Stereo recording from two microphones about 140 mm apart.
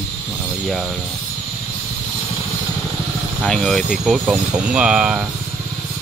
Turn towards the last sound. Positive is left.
turn(degrees=-5)  # may be behind; listen again after turning